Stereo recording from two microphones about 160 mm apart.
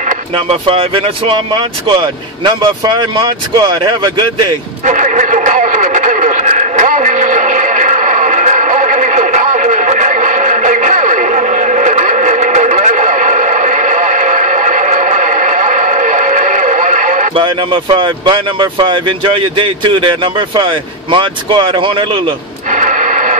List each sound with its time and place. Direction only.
0.3 s speech: 35° right (ahead or behind)
4.8 s radio: 50° right (ahead or behind)
17.3 s speech: 30° right (ahead or behind)
22.7 s a sound: 50° right (ahead or behind)